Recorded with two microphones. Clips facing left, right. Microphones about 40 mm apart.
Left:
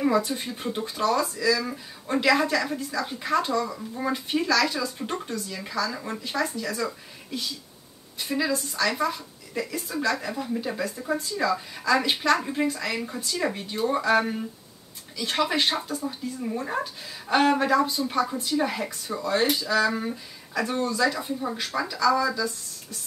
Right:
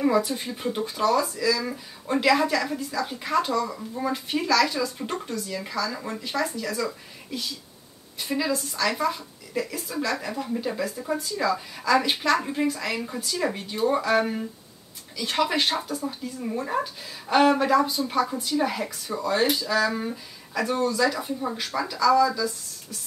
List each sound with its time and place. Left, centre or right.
0.4 s speech: centre
3.6 s speech: centre
4.0 s speech: centre
5.0 s speech: centre
5.5 s speech: centre
8.5 s speech: centre
14.2 s speech: centre
19.6 s speech: centre